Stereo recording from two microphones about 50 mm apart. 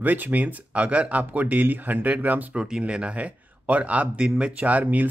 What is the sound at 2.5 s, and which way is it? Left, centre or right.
Speech, centre.